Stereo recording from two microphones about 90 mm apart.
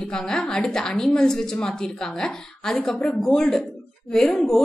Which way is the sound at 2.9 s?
15° left (ahead or behind).